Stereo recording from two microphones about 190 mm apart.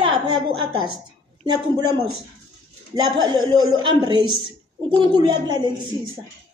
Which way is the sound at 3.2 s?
20° right (ahead or behind).